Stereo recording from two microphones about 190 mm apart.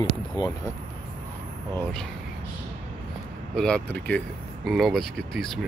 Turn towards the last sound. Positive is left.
turn(degrees=0)  # may be behind; listen again after turning